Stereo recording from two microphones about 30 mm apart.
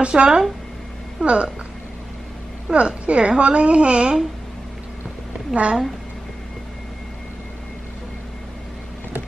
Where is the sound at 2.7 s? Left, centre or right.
Right.